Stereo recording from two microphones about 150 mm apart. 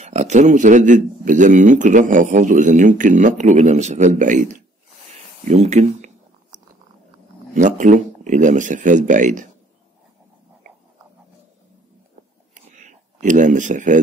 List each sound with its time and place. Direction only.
0.0 s a man's voice: 50° right (ahead or behind)
5.5 s speech: 50° right (ahead or behind)
7.5 s a man's voice: 60° right (ahead or behind)
12.7 s a sound: 55° right (ahead or behind)